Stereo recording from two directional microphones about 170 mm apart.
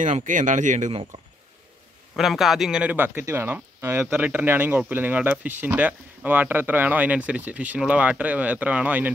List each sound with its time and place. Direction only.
0.0 s speech: 50° right (ahead or behind)
2.1 s speech: centre (ahead or behind)